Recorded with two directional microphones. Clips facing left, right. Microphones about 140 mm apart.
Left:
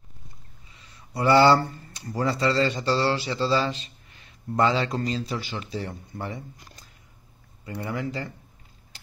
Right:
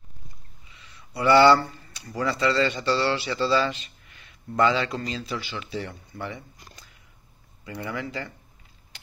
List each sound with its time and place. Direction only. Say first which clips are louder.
1.1 s speech: right 1 dB; 40° left (ahead or behind)